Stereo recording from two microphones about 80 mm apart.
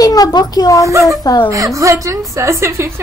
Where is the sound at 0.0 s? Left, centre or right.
Left.